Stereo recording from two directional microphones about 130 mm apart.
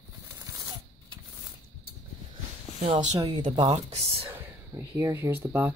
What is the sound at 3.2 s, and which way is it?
Speech, 35° right (ahead or behind).